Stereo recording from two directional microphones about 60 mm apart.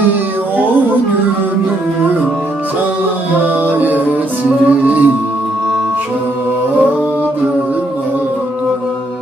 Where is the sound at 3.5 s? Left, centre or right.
Right.